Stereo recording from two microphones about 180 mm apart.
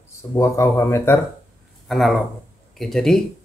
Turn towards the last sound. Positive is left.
turn(degrees=0)  # may be behind; listen again after turning